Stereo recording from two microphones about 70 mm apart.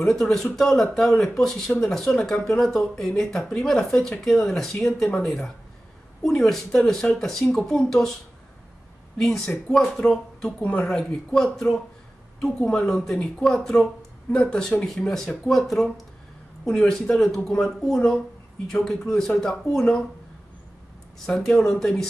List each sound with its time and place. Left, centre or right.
0.0 s speech: centre
9.2 s speech: centre
10.6 s speech: left
10.9 s speech: centre
21.3 s speech: centre